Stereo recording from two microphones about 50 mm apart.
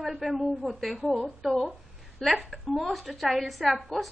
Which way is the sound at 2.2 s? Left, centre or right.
Centre.